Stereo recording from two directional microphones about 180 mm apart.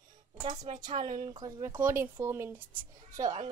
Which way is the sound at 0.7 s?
40° right (ahead or behind).